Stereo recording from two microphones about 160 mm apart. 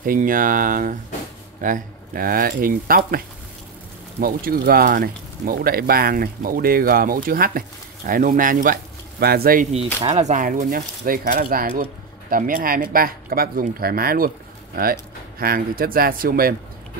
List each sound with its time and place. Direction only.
0.0 s speech: 60° right (ahead or behind)
9.2 s speech: 75° right (ahead or behind)
10.0 s speech: 45° right (ahead or behind); by 16.5 s 65° right (ahead or behind)